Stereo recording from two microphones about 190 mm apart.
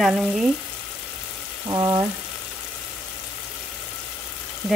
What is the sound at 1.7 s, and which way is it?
Speech, 20° right (ahead or behind).